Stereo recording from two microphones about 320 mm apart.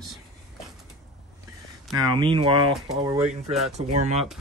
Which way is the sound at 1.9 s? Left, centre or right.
Centre.